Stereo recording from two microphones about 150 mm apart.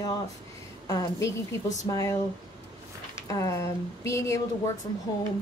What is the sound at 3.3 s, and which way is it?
Speech, 20° left (ahead or behind).